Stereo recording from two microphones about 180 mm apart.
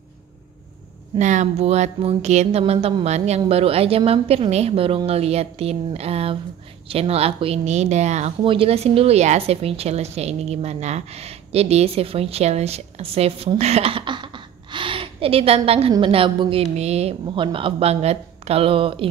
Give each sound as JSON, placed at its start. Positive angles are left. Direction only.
{"t": 1.1, "sound": "speech", "side_deg": -40}